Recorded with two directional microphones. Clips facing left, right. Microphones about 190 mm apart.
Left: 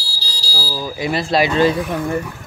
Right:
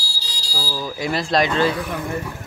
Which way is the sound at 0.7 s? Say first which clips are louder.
Left 3 dB; 5° left (ahead or behind).